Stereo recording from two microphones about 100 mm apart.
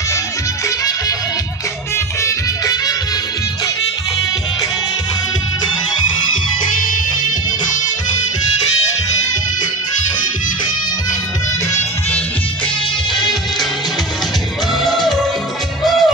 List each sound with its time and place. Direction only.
2.2 s music: 35° left (ahead or behind)
14.8 s music: centre (ahead or behind)